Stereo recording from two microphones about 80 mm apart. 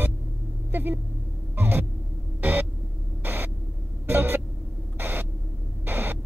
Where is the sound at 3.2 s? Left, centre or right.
Right.